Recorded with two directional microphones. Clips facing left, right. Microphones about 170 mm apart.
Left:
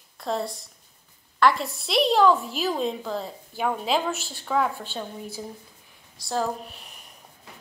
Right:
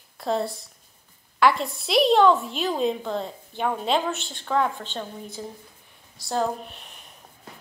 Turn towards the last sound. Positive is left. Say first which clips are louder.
# even
turn(degrees=0)  # may be behind; listen again after turning